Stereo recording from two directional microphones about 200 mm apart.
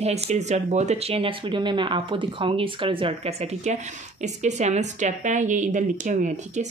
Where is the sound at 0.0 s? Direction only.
35° right (ahead or behind).